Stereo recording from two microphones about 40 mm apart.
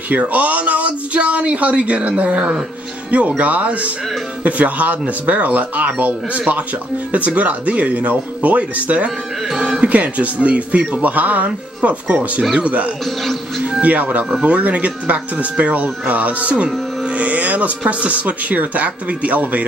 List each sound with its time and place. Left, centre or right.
0.1 s speech: right
9.6 s speech: right
9.8 s speech: right
13.0 s speech: centre
13.7 s speech: right